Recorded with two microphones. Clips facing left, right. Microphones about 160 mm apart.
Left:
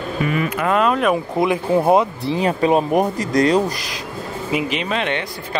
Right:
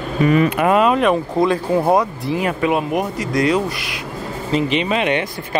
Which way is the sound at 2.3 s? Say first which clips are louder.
Left 2 dB; 30° left (ahead or behind).